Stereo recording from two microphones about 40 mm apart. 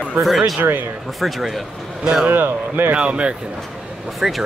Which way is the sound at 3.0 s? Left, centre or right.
Right.